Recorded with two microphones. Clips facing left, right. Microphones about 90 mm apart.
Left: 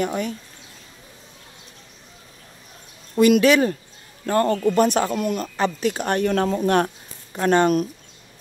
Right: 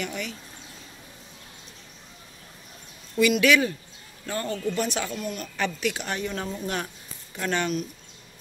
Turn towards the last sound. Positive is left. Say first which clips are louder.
# left 9 dB
turn(degrees=45)  # may be behind; listen again after turning